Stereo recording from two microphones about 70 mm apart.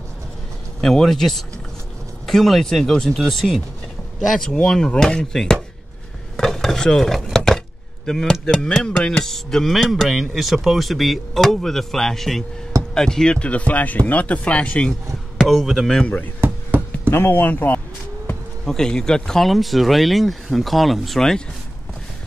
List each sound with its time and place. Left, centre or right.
0.7 s speech: centre
6.3 s dishes: centre
9.2 s speech: centre
15.3 s speech: centre
16.3 s a sound: right
17.1 s speech: left
18.7 s speech: centre